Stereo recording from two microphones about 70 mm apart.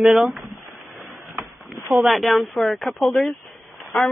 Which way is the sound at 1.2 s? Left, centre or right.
Centre.